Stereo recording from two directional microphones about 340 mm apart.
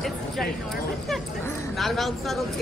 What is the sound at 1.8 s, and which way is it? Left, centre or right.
Speech, centre.